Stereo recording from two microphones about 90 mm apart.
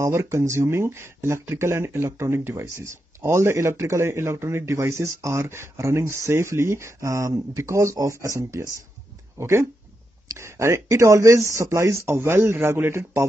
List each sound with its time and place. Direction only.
0.0 s speech: 30° right (ahead or behind)